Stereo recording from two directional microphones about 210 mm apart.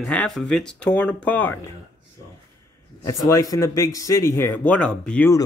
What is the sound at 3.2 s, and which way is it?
Speech, 15° left (ahead or behind).